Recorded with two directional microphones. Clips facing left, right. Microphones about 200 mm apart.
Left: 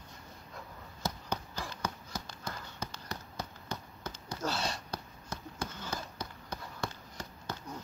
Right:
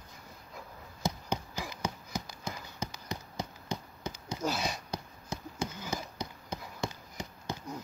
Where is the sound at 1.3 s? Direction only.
10° right (ahead or behind).